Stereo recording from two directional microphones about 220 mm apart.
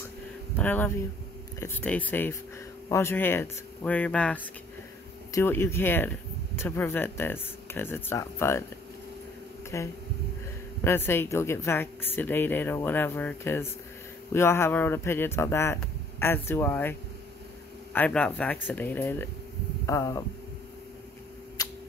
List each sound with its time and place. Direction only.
0.6 s speech: 10° left (ahead or behind)
9.7 s speech: 10° left (ahead or behind)
17.9 s speech: 5° left (ahead or behind)
21.6 s a sound: 15° left (ahead or behind)